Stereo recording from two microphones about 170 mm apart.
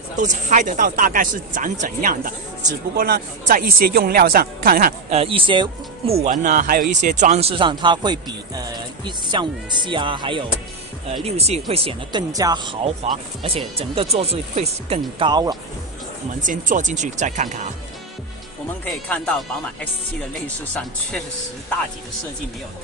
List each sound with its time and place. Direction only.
0.2 s speech: 45° right (ahead or behind)
5.1 s speech: 35° right (ahead or behind)
6.3 s speech: 50° right (ahead or behind); by 12.7 s 25° right (ahead or behind)
12.8 s speech: 40° right (ahead or behind)
16.3 s speech: 50° right (ahead or behind)
18.9 s speech: 5° left (ahead or behind)